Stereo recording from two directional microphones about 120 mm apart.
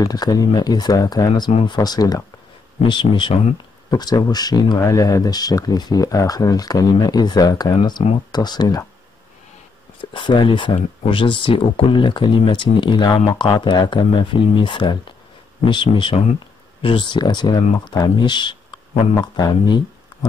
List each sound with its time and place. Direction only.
0.0 s speech: 30° left (ahead or behind)
2.8 s speech: 40° left (ahead or behind)
10.1 s speech: 40° left (ahead or behind)